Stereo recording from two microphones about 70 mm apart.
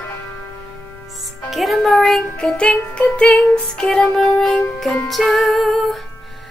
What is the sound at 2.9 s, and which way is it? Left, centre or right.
Music, centre.